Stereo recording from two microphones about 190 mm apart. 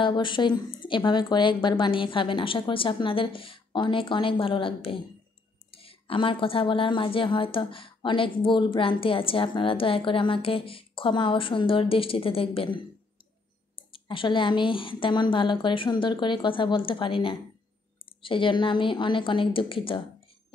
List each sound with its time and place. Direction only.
0.0 s speech: 25° left (ahead or behind)